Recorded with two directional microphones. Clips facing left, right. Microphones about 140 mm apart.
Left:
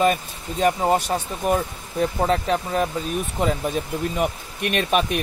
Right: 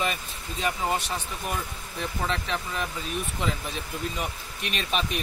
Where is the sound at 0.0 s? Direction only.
45° left (ahead or behind).